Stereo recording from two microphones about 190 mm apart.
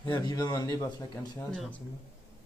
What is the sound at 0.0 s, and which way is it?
Speech, 20° left (ahead or behind).